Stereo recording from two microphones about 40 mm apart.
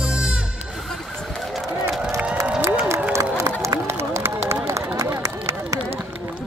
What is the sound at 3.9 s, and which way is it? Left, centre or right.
Run, right.